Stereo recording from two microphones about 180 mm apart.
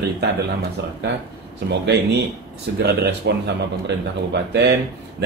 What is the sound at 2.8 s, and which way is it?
Speech, 65° right (ahead or behind).